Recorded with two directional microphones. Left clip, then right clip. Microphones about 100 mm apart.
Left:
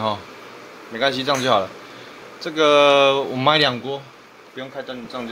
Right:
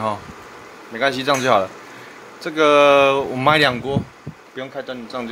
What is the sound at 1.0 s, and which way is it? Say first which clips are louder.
A man's voice: right 2 dB; 25° right (ahead or behind).